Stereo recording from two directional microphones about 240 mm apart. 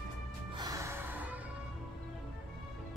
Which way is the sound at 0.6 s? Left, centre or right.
Centre.